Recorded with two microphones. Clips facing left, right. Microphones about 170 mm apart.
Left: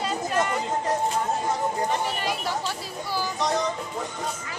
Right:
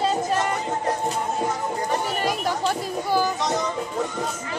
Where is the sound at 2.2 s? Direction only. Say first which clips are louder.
Right 4 dB; 50° right (ahead or behind).